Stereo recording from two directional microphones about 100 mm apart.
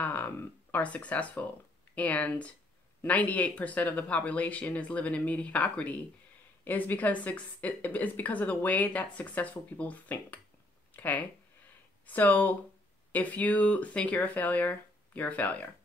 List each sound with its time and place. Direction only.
0.0 s speech: 15° left (ahead or behind)